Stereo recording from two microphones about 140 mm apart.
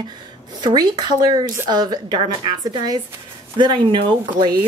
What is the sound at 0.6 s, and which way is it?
Speech, 30° right (ahead or behind).